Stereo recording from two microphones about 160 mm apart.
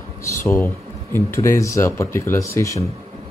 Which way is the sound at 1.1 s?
15° left (ahead or behind).